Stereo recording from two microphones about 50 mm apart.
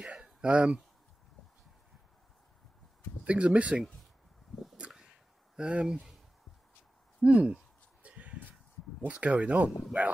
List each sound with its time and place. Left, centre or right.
0.2 s a sound: right
3.3 s speech: right
5.6 s speech: centre
7.2 s speech: right
8.0 s a sound: right
9.0 s speech: right